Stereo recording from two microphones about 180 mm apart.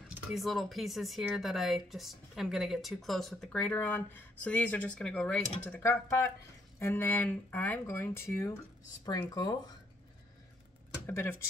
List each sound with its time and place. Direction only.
0.3 s speech: centre (ahead or behind); by 9.6 s 20° left (ahead or behind)
11.1 s speech: 10° left (ahead or behind)